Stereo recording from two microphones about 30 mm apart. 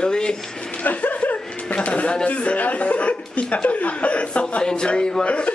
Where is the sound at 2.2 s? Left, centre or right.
Left.